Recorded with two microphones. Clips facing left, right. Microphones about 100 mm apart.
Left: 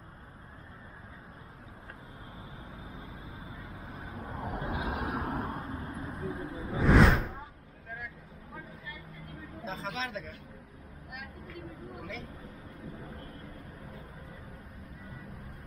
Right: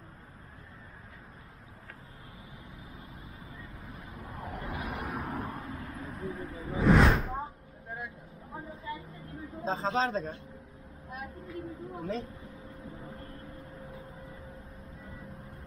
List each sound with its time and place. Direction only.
2.9 s vehicle: 30° left (ahead or behind)
5.1 s vehicle: 35° left (ahead or behind)
6.7 s whoosh: centre (ahead or behind)
8.5 s vehicle: 30° right (ahead or behind)
9.7 s speech: 35° right (ahead or behind)
11.1 s a sound: 30° right (ahead or behind)